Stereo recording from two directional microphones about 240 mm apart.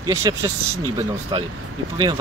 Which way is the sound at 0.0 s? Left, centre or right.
Centre.